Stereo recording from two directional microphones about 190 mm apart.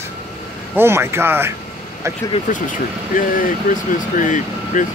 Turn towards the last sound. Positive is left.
turn(degrees=40)  # may be behind; listen again after turning